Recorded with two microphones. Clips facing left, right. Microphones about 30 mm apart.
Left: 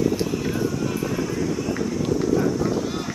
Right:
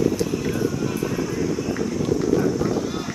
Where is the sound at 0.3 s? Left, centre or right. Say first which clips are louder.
Right 1 dB; centre.